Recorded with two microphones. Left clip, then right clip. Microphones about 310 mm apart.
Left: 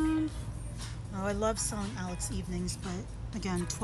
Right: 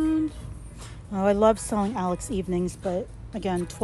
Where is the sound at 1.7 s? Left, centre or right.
Right.